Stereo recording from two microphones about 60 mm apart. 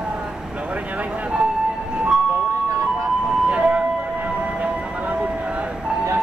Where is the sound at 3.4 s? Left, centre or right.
Centre.